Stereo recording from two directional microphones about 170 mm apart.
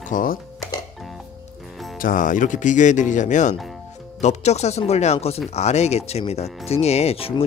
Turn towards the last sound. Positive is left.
turn(degrees=35)  # may be behind; listen again after turning